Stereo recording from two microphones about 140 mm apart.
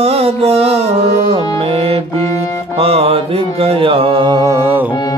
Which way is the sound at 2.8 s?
45° right (ahead or behind).